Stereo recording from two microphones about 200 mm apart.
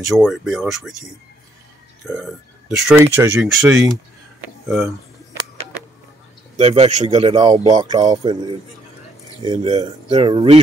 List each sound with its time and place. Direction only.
0.0 s speech: centre (ahead or behind)
2.1 s speech: centre (ahead or behind)
6.5 s speech: 30° right (ahead or behind)